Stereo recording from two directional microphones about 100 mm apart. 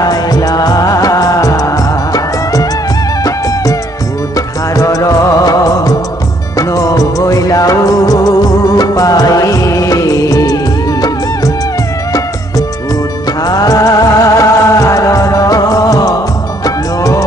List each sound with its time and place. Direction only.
0.0 s music: 40° left (ahead or behind)
4.7 s music: 35° left (ahead or behind)
6.7 s music of bollywood: 35° left (ahead or behind)
13.5 s music: 40° left (ahead or behind)